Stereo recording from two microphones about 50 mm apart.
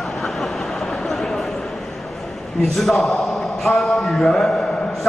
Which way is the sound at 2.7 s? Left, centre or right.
Centre.